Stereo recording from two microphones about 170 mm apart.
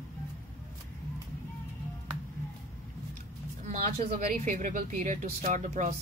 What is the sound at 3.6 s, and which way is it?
Speech, 50° right (ahead or behind).